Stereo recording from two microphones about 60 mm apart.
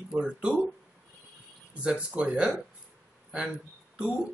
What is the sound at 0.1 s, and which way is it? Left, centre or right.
Speech, centre.